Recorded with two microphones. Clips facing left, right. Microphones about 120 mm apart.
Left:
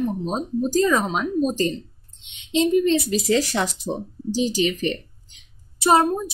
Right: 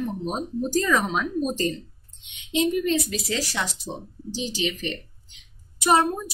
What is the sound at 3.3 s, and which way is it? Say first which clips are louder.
Speech: left 8 dB; 45° left (ahead or behind).